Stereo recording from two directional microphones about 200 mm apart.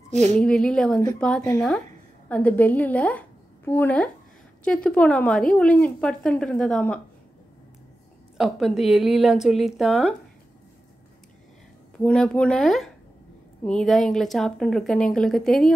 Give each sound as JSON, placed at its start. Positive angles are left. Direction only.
{"t": 0.1, "sound": "a woman's voice", "side_deg": -35}
{"t": 0.4, "sound": "a woman's voice", "side_deg": 5}
{"t": 8.4, "sound": "a woman's voice", "side_deg": 0}
{"t": 12.0, "sound": "a woman's voice", "side_deg": 5}